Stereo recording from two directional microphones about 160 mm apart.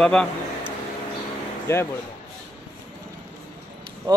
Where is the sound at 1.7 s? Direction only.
15° left (ahead or behind).